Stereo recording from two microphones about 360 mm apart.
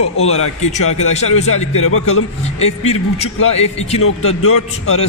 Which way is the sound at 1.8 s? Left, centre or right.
Left.